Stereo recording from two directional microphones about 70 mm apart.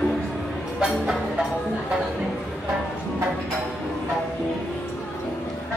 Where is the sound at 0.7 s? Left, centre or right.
Centre.